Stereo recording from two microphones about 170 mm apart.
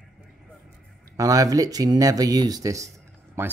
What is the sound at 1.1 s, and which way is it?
Speech, 20° right (ahead or behind).